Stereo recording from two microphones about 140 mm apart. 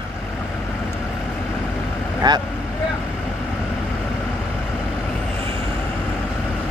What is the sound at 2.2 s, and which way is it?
Speech, 30° right (ahead or behind).